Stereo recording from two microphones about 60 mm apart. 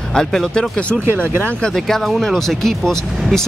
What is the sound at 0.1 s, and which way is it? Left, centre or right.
Speech, centre.